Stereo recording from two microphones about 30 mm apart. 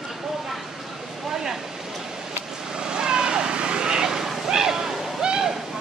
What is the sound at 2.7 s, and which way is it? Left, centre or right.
Vehicle, right.